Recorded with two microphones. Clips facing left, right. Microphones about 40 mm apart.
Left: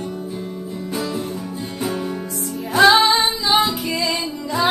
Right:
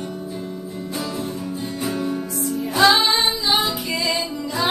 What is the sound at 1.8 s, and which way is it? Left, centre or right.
Music, left.